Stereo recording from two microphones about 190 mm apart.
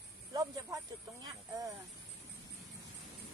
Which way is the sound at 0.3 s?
20° right (ahead or behind).